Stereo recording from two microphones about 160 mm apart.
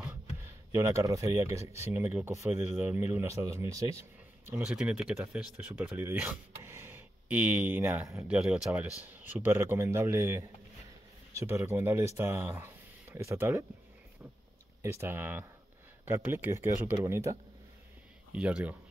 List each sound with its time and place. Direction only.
0.7 s speech: 20° right (ahead or behind)
4.6 s speech: 5° right (ahead or behind)
14.8 s speech: 15° right (ahead or behind)
18.3 s speech: 5° right (ahead or behind)